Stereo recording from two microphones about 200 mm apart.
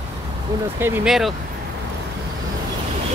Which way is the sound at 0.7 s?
10° right (ahead or behind).